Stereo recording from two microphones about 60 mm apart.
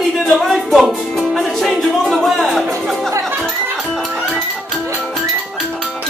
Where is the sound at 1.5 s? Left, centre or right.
Centre.